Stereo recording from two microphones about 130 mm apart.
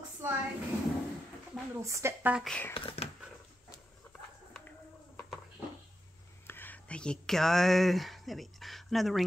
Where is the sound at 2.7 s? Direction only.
45° left (ahead or behind).